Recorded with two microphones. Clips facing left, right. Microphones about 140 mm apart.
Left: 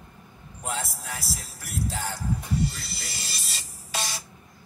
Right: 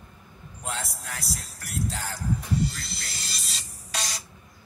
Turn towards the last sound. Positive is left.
turn(degrees=0)  # may be behind; listen again after turning